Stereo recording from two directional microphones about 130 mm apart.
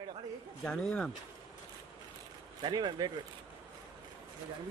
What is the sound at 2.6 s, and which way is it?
Speech, 30° right (ahead or behind).